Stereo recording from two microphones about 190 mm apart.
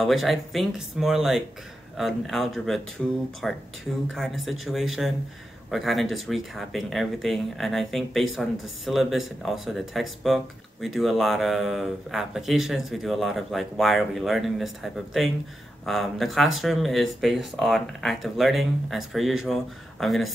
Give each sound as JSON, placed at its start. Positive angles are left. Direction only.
{"t": 0.0, "sound": "speech", "side_deg": 0}